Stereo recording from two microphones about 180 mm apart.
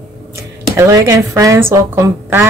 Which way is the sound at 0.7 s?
15° right (ahead or behind).